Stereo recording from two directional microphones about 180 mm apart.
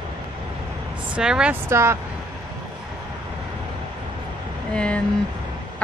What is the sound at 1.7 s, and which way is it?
Speech, 15° right (ahead or behind).